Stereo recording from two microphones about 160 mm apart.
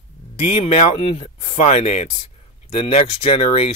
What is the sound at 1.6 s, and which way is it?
Speech, 45° left (ahead or behind).